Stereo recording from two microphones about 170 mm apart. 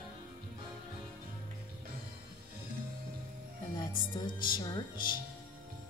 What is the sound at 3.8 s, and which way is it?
Speech, 30° left (ahead or behind).